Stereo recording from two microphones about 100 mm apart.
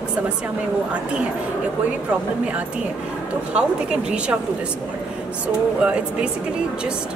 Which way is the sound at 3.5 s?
10° right (ahead or behind).